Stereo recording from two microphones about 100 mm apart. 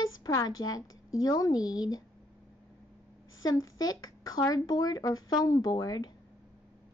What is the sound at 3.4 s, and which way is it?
Speech, 40° left (ahead or behind).